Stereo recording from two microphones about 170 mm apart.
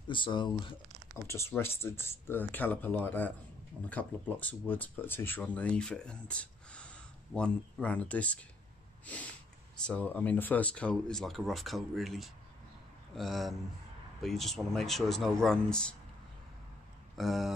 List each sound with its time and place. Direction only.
0.1 s speech: 30° left (ahead or behind)
1.1 s speech: 15° left (ahead or behind)
9.0 s snort: 10° left (ahead or behind)
9.8 s speech: 10° left (ahead or behind)
17.2 s speech: centre (ahead or behind)